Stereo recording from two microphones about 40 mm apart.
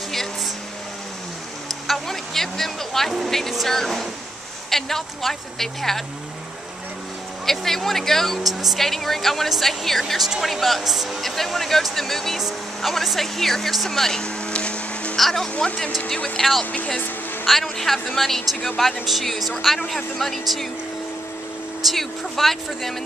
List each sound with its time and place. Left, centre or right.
2.0 s vehicle: centre
3.1 s speech: centre
7.4 s speech: centre
8.5 s speech: centre
8.7 s speech: centre
12.4 s speech: centre
12.9 s speech: centre
14.2 s vehicle: left
15.1 s speech: centre
15.6 s speech: centre
21.8 s speech: centre